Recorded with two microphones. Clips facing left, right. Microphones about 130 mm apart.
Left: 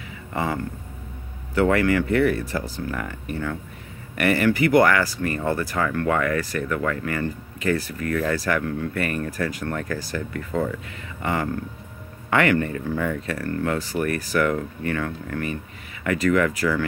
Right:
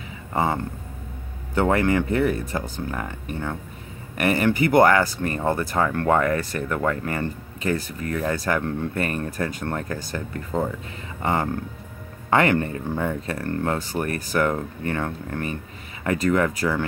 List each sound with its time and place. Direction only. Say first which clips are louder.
0.3 s speech: right 2 dB; 30° right (ahead or behind)
4.2 s speech: left 1 dB; 25° right (ahead or behind)